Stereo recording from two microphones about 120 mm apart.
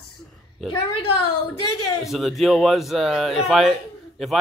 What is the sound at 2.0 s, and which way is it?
Speech, centre (ahead or behind).